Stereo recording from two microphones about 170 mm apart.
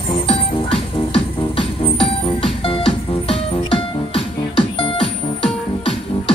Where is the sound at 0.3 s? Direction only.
30° left (ahead or behind).